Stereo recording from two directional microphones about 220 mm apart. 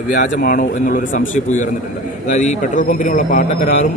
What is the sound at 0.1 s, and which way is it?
A man's voice, 40° left (ahead or behind).